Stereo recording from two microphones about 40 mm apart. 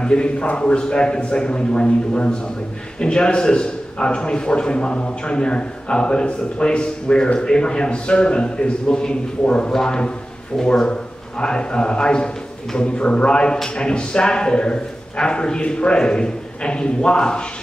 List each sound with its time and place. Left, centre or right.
0.0 s a man's voice: left